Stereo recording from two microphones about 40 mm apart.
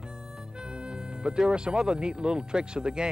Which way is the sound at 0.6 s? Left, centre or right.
Right.